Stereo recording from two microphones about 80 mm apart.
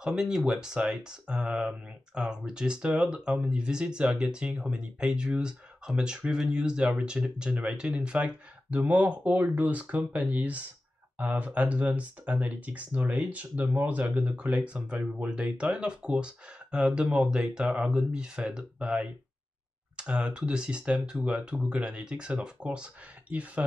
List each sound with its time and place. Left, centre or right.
0.0 s speech: centre